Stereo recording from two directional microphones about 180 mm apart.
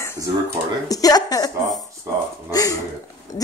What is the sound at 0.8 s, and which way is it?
A woman's voice, 20° left (ahead or behind).